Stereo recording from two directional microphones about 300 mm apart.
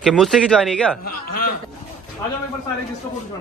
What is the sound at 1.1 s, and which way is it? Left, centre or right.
Speech, left.